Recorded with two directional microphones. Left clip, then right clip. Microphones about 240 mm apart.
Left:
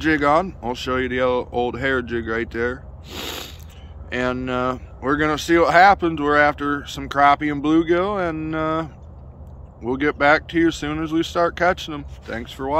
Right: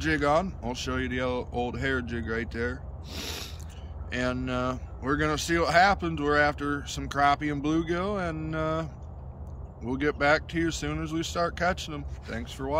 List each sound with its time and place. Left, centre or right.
0.0 s speech: centre